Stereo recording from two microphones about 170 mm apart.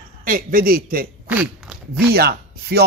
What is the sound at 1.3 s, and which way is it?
Speech, 10° right (ahead or behind).